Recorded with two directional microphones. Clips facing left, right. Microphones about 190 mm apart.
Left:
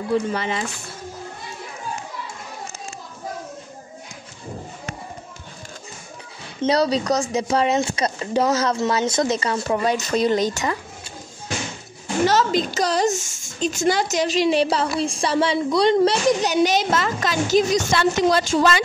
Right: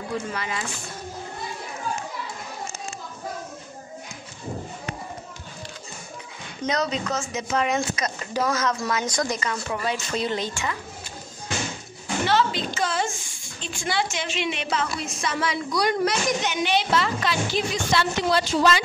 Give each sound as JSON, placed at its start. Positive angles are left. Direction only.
{"t": 0.3, "sound": "speech", "side_deg": 25}
{"t": 6.6, "sound": "a woman's voice", "side_deg": 35}
{"t": 12.3, "sound": "a woman's voice", "side_deg": 40}